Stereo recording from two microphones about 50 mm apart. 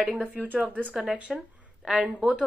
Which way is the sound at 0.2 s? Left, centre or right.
Right.